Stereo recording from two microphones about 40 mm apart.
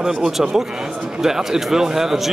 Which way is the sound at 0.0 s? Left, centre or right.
Centre.